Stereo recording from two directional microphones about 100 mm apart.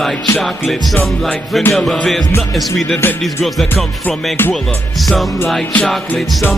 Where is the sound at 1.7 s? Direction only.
5° left (ahead or behind).